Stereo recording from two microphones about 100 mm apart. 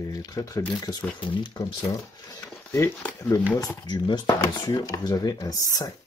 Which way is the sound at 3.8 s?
45° left (ahead or behind).